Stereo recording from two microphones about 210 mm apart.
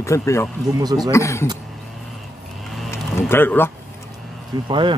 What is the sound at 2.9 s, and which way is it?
Speech, 10° left (ahead or behind).